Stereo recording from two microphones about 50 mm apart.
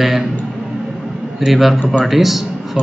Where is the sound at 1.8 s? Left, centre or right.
Centre.